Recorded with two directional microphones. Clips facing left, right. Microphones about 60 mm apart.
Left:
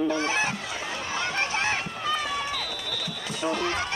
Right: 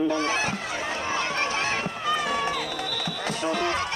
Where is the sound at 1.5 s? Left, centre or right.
Left.